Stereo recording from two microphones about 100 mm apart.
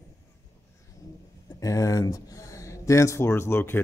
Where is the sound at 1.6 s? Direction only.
35° left (ahead or behind).